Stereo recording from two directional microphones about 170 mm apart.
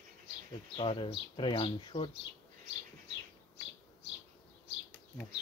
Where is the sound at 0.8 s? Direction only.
30° left (ahead or behind).